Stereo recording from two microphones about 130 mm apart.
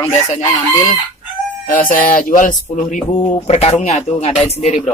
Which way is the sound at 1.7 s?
90° left.